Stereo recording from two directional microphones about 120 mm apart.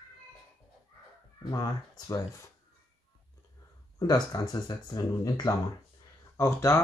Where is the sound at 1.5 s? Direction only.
30° left (ahead or behind).